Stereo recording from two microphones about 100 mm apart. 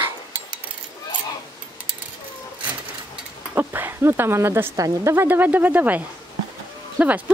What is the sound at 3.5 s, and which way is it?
Speech, 20° right (ahead or behind).